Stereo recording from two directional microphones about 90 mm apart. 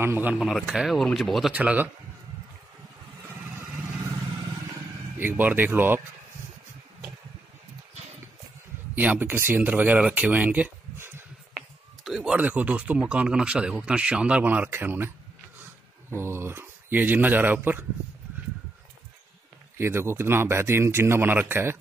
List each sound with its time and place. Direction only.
0.0 s speech: 25° right (ahead or behind)
0.4 s speech: 5° right (ahead or behind)
1.5 s speech: 15° right (ahead or behind)
5.2 s speech: 20° right (ahead or behind)
8.9 s speech: 20° right (ahead or behind)
11.5 s a sound: 5° right (ahead or behind)
12.4 s speech: 15° right (ahead or behind)
16.1 s speech: 30° right (ahead or behind)
19.8 s speech: 30° right (ahead or behind)